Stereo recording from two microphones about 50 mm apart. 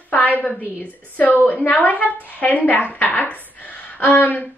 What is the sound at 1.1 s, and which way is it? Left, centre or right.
A woman's voice, left.